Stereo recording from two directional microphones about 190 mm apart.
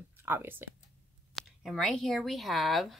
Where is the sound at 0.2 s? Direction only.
10° right (ahead or behind).